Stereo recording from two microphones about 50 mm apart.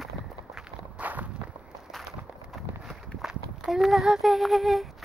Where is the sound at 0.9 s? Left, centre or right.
Right.